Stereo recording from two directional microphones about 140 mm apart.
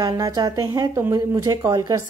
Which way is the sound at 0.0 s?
25° right (ahead or behind).